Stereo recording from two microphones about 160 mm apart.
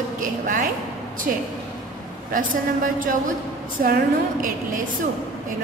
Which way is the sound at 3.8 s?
55° right (ahead or behind).